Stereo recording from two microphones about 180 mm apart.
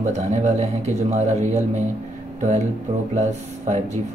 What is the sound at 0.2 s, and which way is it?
Speech, 40° right (ahead or behind).